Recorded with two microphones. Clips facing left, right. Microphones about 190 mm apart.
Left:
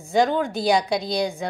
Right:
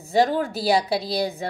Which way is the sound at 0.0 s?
5° right (ahead or behind).